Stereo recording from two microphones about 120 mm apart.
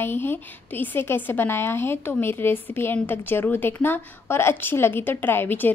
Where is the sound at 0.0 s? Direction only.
20° left (ahead or behind).